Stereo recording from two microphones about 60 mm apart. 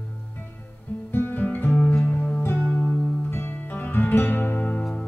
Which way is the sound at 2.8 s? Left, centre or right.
Left.